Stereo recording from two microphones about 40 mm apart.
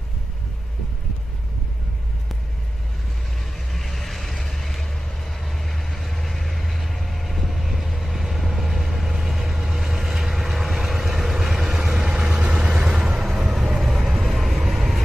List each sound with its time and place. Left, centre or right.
3.7 s vehicle: centre
12.3 s vehicle: right
13.3 s vehicle: centre